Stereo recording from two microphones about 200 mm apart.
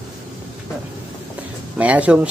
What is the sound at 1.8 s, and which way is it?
Speech, 5° right (ahead or behind).